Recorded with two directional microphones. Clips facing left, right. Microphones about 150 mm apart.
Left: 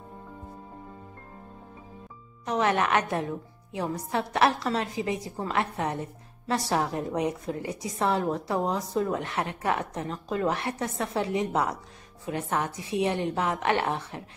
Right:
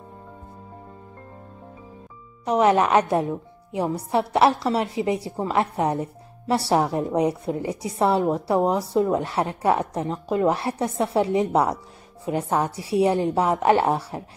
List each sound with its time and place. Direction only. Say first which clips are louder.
2.4 s a woman's voice: right 7 dB; 30° right (ahead or behind)